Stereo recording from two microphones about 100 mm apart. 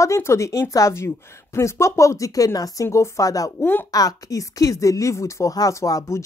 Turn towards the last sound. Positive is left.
turn(degrees=35)  # may be behind; listen again after turning